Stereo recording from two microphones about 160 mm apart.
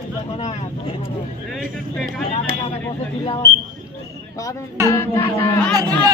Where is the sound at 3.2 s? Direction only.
35° left (ahead or behind).